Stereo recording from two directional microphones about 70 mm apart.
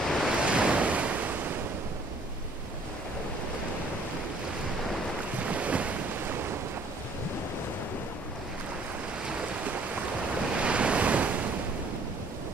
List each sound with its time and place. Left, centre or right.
0.0 s waves: centre
0.4 s waves: centre
5.4 s waves: centre
10.5 s waves: centre